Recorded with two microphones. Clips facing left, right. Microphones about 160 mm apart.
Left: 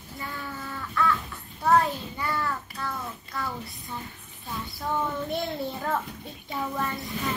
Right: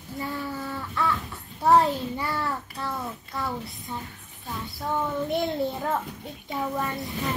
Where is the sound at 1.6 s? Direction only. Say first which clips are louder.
Right 3 dB; 20° right (ahead or behind).